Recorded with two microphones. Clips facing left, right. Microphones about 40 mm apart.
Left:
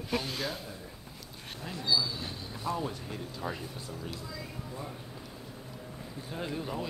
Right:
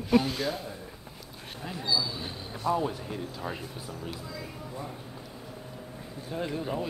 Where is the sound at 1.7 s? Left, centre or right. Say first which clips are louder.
Right 1 dB; centre.